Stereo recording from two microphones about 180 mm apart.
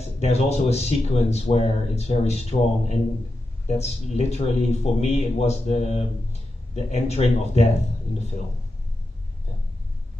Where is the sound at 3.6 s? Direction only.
35° left (ahead or behind).